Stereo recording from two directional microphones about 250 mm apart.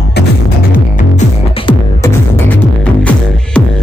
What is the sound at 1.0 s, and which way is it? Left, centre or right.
Music, left.